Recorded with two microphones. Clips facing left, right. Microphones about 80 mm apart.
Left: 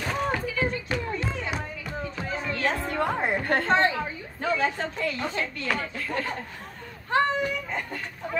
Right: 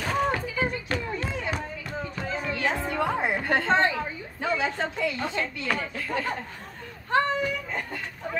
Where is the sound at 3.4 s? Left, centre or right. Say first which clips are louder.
Even; centre.